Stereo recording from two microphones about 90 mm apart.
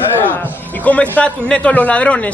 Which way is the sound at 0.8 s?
15° left (ahead or behind).